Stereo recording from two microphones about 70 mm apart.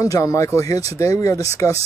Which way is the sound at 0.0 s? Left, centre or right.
Left.